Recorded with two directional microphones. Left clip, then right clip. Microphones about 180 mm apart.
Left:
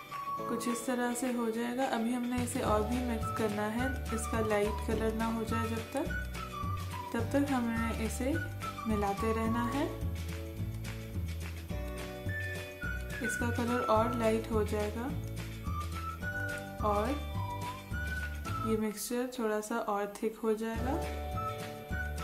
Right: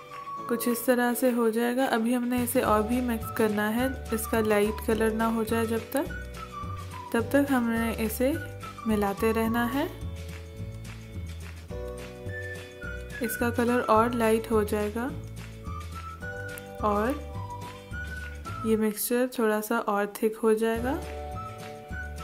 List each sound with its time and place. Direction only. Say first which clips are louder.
0.7 s a woman's voice: right 9 dB; 35° right (ahead or behind)
7.1 s a woman's voice: right 8 dB; 40° right (ahead or behind)
13.2 s a woman's voice: right 7 dB; 35° right (ahead or behind)
16.3 s music: left 1 dB; centre (ahead or behind)
16.8 s a woman's voice: right 5 dB; 40° right (ahead or behind)
18.7 s a woman's voice: right 10 dB; 35° right (ahead or behind)